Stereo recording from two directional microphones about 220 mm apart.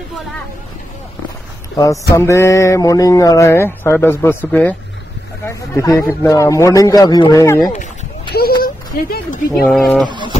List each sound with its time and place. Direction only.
1.8 s a sound: 15° left (ahead or behind)
8.4 s speech: 45° left (ahead or behind)
9.5 s speech: 5° left (ahead or behind)
10.0 s speech: 20° right (ahead or behind)